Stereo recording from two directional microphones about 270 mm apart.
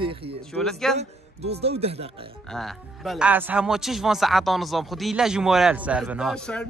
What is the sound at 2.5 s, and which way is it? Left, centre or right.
Speech, centre.